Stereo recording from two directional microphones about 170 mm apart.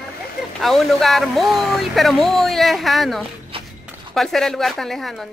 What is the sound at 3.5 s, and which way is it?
Walk, 30° right (ahead or behind).